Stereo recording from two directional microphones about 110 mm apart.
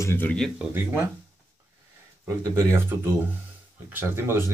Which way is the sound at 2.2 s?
30° right (ahead or behind).